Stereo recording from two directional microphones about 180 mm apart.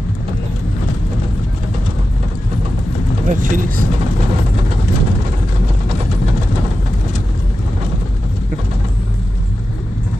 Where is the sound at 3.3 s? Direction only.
45° right (ahead or behind).